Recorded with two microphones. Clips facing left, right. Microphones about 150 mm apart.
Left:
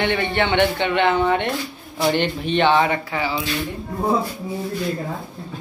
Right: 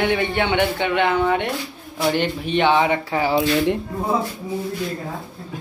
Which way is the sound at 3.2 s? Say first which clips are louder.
Right 7 dB; 55° right (ahead or behind).